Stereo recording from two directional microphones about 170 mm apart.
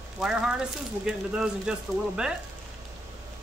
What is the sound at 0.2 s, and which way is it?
Speech, 5° right (ahead or behind).